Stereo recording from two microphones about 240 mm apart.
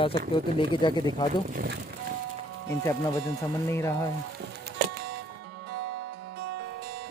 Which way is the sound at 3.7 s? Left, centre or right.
Centre.